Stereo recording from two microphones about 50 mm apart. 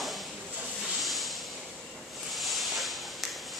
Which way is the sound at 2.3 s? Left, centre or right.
Centre.